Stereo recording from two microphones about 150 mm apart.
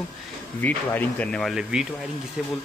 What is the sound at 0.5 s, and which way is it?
Speech, 10° left (ahead or behind).